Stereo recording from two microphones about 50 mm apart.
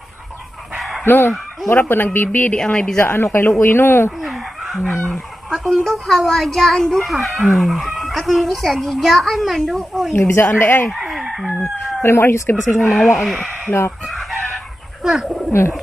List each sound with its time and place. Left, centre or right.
0.7 s bow-wow: centre
1.0 s speech: left
2.5 s a woman's voice: left
3.0 s a woman's voice: left
4.2 s chicken: centre
5.5 s speech: centre
5.8 s speech: centre
10.1 s a woman's voice: left
10.9 s chicken: centre
11.6 s speech: left
12.7 s speech: centre
14.0 s chicken: centre
15.0 s bird: centre